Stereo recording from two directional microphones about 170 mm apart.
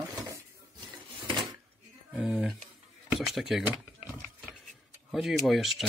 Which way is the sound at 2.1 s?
5° right (ahead or behind).